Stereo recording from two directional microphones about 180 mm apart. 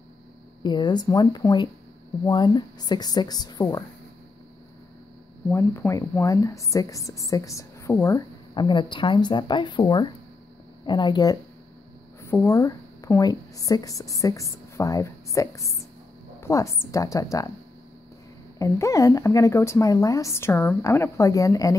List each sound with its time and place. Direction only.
0.6 s a woman's voice: 25° left (ahead or behind)
5.5 s a woman's voice: 15° left (ahead or behind)
18.6 s a woman's voice: 15° left (ahead or behind)